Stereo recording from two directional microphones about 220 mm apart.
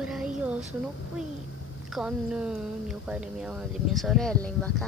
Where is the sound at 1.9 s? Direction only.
5° right (ahead or behind).